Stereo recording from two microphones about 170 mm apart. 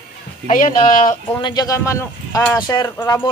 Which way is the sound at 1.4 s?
25° left (ahead or behind).